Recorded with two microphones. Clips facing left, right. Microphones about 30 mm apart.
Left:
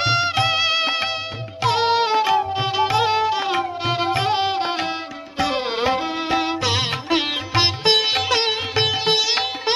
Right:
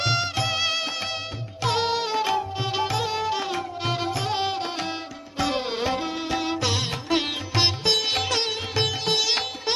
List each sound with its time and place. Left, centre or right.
0.0 s music: centre
0.3 s music: left
6.7 s music: left
7.1 s music: centre
8.1 s sitar: left